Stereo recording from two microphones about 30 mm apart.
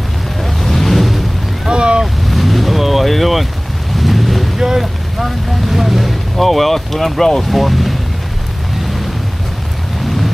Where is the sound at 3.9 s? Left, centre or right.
Centre.